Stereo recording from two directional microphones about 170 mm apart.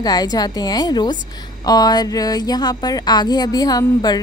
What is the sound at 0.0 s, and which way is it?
A woman's voice, 25° left (ahead or behind).